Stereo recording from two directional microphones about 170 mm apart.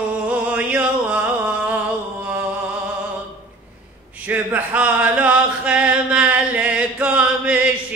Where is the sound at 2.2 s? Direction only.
10° right (ahead or behind).